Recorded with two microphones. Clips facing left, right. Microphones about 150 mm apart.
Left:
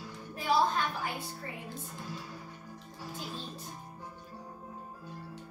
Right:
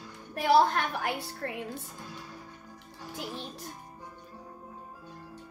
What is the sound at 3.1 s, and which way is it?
Music, 70° right (ahead or behind).